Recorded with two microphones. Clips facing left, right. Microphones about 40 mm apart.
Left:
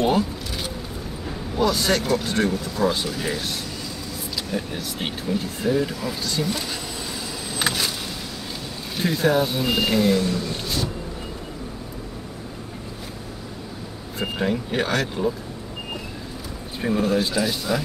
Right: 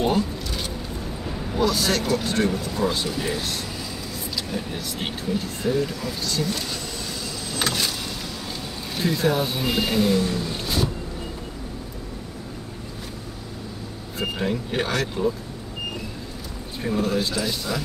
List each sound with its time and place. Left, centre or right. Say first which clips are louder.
0.0 s a sound: left 2 dB; centre
1.6 s speech: left 1 dB; centre
7.6 s vehicle: left 1 dB; centre
8.9 s speech: left 2 dB; centre
14.1 s speech: left 1 dB; centre
16.9 s speech: left 2 dB; centre